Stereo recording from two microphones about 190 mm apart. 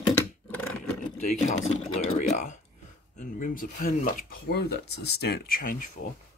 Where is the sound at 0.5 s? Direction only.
10° left (ahead or behind).